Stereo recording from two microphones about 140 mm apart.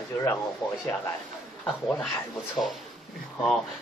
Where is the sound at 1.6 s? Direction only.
Centre (ahead or behind).